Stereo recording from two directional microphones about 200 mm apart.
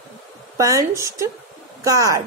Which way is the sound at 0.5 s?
15° right (ahead or behind).